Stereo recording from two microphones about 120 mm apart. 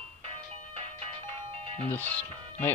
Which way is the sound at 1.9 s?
15° left (ahead or behind).